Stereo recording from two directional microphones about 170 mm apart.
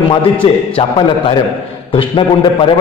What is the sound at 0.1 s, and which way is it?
A man's voice, 30° left (ahead or behind).